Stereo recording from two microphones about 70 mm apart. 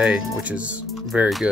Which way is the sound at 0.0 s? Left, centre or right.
Centre.